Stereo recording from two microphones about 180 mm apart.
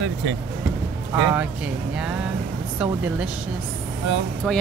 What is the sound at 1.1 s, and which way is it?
Speech, 10° right (ahead or behind).